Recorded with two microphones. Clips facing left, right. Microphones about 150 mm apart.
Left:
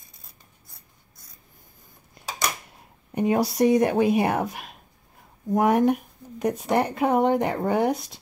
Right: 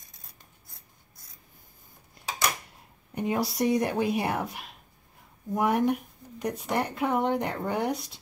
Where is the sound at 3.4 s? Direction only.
55° left (ahead or behind).